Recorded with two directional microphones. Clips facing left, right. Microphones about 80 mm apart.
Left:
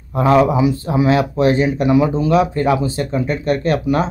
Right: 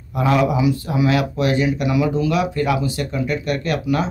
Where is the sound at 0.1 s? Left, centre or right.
Left.